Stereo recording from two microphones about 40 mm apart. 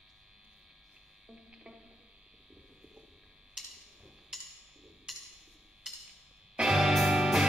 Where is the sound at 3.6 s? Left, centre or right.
Centre.